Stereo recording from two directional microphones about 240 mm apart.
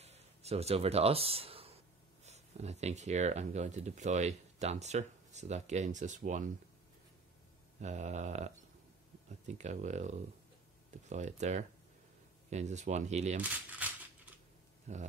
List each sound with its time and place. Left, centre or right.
0.0 s a sound: right
2.2 s speech: right
7.8 s speech: right
13.4 s coin: centre
14.9 s speech: right